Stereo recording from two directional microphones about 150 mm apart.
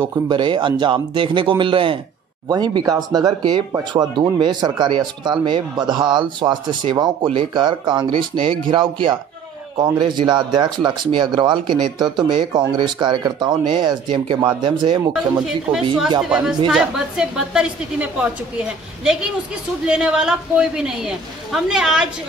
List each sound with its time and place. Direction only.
0.3 s speech: 30° right (ahead or behind)
16.2 s speech: 5° right (ahead or behind)
19.9 s speech: 5° right (ahead or behind)